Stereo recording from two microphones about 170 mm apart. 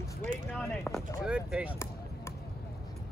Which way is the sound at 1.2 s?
5° right (ahead or behind).